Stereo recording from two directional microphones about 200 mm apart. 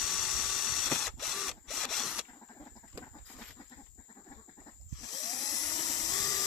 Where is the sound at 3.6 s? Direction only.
20° left (ahead or behind).